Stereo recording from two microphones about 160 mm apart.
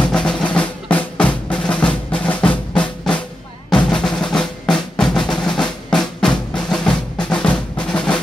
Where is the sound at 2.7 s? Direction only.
5° left (ahead or behind).